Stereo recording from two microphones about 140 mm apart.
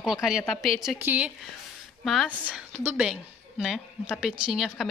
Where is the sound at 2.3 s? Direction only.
10° right (ahead or behind).